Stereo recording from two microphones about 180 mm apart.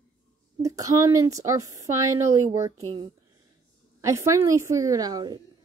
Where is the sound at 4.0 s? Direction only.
15° right (ahead or behind).